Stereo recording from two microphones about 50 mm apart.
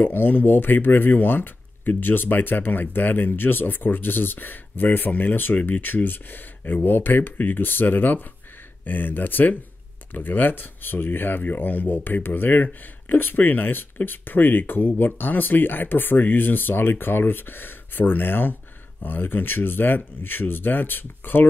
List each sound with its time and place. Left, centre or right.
0.0 s speech: left